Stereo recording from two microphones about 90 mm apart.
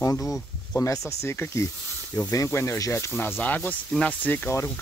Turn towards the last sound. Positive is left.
turn(degrees=20)  # may be behind; listen again after turning